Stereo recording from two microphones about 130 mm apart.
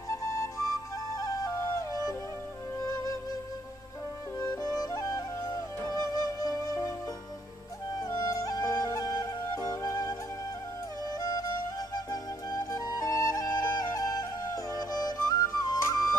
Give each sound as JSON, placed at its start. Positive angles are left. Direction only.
{"t": 0.1, "sound": "music", "side_deg": 25}
{"t": 4.4, "sound": "music", "side_deg": 25}
{"t": 8.0, "sound": "music", "side_deg": 30}